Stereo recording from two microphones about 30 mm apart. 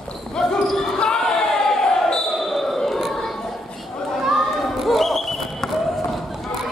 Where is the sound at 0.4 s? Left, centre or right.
Centre.